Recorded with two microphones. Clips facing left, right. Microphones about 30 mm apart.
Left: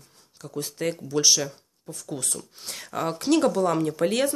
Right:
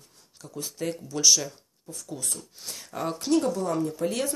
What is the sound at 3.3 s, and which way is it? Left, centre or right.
Speech, left.